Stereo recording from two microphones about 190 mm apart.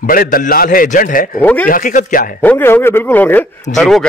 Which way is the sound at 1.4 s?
10° left (ahead or behind).